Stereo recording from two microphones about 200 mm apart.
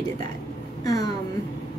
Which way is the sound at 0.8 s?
20° left (ahead or behind).